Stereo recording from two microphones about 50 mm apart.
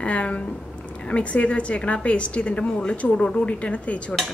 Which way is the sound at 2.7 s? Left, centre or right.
Centre.